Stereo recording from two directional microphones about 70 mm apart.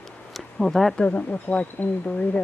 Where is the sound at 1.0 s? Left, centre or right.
Left.